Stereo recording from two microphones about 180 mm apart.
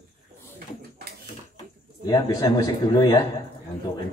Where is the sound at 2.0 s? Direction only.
20° left (ahead or behind).